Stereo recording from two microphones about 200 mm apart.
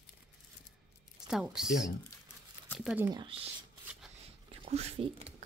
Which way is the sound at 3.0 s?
25° right (ahead or behind).